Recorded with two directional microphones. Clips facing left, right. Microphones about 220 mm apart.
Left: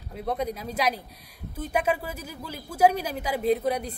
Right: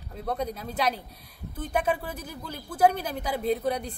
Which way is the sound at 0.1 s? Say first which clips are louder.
Left 2 dB; 10° left (ahead or behind).